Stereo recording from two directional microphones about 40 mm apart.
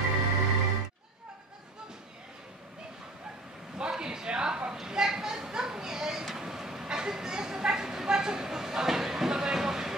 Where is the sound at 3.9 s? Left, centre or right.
Centre.